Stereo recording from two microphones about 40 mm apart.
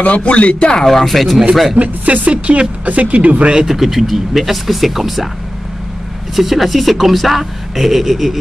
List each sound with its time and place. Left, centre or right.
0.0 s speech: left
0.8 s speech: centre
1.8 s speech: right
3.6 s speech: centre
6.3 s speech: centre